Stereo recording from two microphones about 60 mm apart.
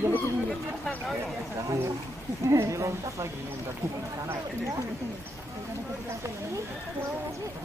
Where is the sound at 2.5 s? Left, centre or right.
Right.